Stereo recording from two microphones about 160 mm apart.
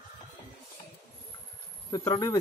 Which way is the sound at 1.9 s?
25° left (ahead or behind).